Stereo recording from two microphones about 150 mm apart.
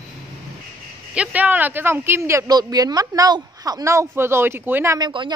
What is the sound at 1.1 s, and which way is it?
Speech, 10° right (ahead or behind).